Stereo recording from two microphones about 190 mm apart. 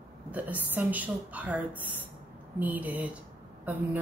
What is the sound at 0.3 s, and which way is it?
A woman's voice, 10° right (ahead or behind).